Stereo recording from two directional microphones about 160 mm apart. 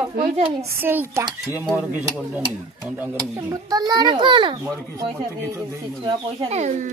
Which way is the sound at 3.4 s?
25° right (ahead or behind).